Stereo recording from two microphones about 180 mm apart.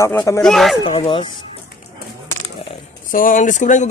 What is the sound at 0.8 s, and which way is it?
Speech, 30° left (ahead or behind).